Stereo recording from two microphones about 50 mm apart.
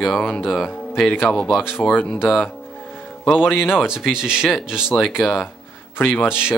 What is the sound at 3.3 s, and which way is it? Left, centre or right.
Speech, left.